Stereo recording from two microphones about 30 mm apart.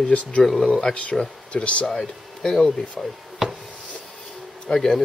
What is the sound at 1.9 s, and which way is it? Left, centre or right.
Speech, centre.